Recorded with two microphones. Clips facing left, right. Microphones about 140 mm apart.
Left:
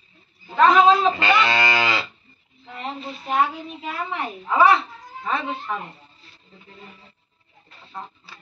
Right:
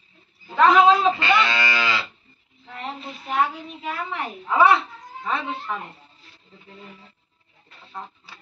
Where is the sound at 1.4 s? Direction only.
45° left (ahead or behind).